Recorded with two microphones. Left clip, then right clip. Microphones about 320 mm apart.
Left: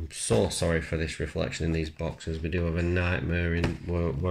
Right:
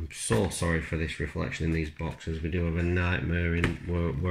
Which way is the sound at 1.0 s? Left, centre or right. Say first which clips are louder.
Left 2 dB; left.